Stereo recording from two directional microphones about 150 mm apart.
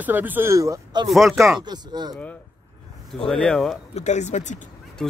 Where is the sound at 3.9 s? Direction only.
50° left (ahead or behind).